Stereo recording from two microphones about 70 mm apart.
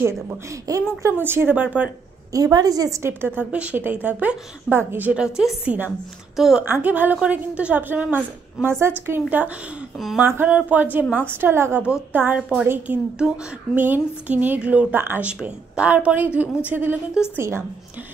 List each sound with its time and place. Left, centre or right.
0.0 s speech: right
1.1 s a woman's voice: right
2.3 s a woman's voice: right
3.0 s a woman's voice: right
5.1 s a woman's voice: centre
6.6 s a woman's voice: right
8.6 s a woman's voice: right
10.2 s a woman's voice: right
12.4 s a woman's voice: centre
12.6 s a woman's voice: right
15.0 s a woman's voice: right
15.4 s a woman's voice: centre
17.4 s a woman's voice: right